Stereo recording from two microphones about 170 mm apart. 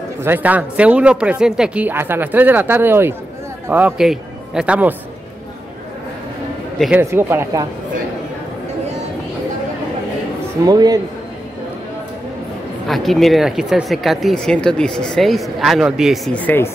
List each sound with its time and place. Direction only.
0.2 s a man's voice: 10° right (ahead or behind)
7.0 s speech: 15° right (ahead or behind)
10.6 s a man's voice: 20° right (ahead or behind)
12.8 s speech: centre (ahead or behind)
16.3 s speech: 10° left (ahead or behind)